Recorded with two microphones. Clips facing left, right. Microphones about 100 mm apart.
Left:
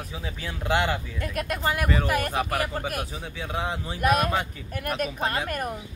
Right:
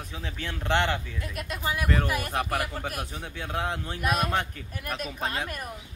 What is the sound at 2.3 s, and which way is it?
Speech, centre (ahead or behind).